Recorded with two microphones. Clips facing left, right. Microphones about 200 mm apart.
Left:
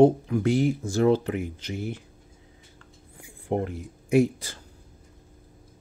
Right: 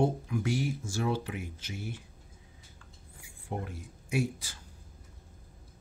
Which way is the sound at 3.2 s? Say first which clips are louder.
Left 11 dB; 60° left (ahead or behind).